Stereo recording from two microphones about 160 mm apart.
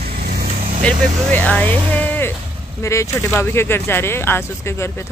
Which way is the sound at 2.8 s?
20° left (ahead or behind).